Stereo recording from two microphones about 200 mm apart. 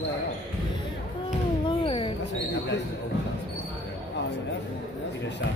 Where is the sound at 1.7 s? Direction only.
25° left (ahead or behind).